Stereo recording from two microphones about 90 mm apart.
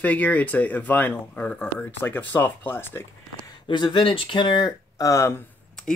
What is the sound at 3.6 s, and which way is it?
Speech, 60° left (ahead or behind).